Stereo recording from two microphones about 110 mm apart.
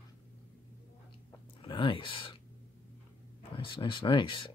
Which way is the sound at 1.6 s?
50° left (ahead or behind).